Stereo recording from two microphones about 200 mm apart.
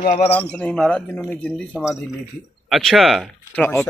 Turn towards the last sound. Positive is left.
turn(degrees=10)  # may be behind; listen again after turning